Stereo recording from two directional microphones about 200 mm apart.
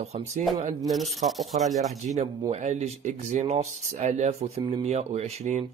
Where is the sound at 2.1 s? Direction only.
35° right (ahead or behind).